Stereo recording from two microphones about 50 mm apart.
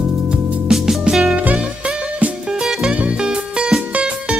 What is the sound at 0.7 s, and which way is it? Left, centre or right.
Music, centre.